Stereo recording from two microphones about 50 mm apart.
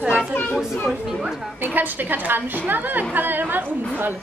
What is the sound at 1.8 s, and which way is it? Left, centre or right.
A woman's voice, right.